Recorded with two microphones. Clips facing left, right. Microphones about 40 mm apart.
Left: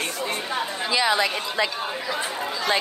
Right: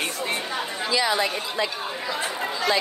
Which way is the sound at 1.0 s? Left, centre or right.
Left.